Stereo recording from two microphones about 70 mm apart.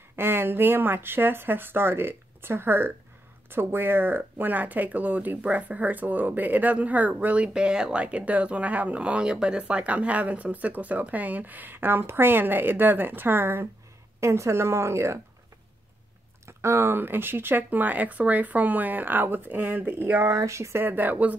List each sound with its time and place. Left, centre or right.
0.1 s speech: right
16.4 s speech: right
20.4 s speech: right
20.8 s speech: right